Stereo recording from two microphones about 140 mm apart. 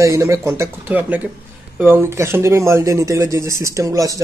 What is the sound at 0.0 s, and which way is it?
Speech, 20° right (ahead or behind).